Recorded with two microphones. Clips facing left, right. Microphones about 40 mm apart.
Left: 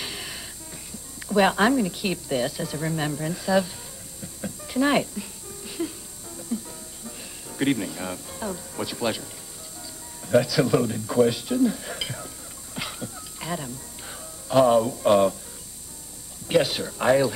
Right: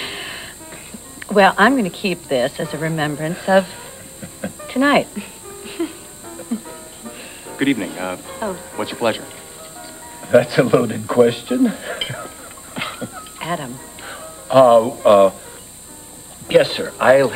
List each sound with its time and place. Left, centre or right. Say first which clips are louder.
0.0 s music: right 6 dB; right
1.2 s speech: right 8 dB; right
4.2 s music: right 6 dB; right
10.2 s speech: right 7 dB; right
12.7 s music: right 7 dB; right
16.4 s speech: right 8 dB; right